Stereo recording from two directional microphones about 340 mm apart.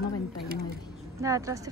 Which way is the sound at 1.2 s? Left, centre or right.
Centre.